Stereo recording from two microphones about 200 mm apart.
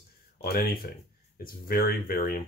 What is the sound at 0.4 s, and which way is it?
Speech, 50° left (ahead or behind).